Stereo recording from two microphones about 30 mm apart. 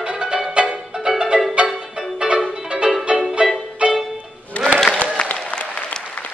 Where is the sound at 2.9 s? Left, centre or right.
Centre.